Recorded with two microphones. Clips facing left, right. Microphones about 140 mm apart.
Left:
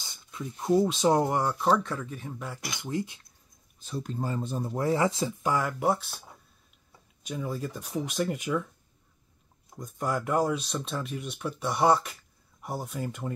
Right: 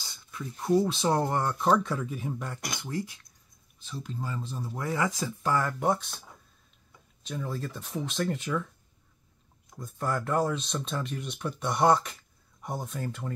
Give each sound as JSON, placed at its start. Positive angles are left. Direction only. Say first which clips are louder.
{"t": 0.0, "sound": "speech", "louder": "left 1 dB", "side_deg": 20}
{"t": 2.8, "sound": "speech", "louder": "left 4 dB", "side_deg": 20}
{"t": 3.8, "sound": "speech", "louder": "left 4 dB", "side_deg": 45}
{"t": 4.7, "sound": "speech", "louder": "left 4 dB", "side_deg": 30}
{"t": 5.4, "sound": "speech", "louder": "even", "side_deg": 10}
{"t": 7.2, "sound": "speech", "louder": "left 2 dB", "side_deg": 10}
{"t": 9.9, "sound": "speech", "louder": "left 1 dB", "side_deg": 15}